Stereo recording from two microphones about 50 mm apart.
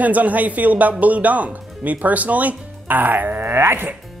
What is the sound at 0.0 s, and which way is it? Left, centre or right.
Speech, right.